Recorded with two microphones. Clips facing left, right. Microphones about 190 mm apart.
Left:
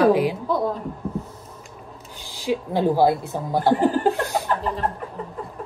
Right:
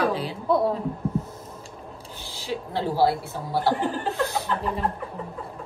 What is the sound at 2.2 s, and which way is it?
Speech, 15° left (ahead or behind).